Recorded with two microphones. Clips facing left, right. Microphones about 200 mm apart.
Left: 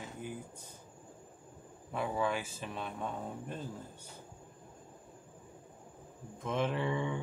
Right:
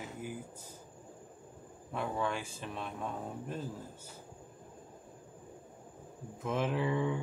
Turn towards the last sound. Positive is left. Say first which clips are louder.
# right 2 dB
turn(degrees=0)  # may be behind; listen again after turning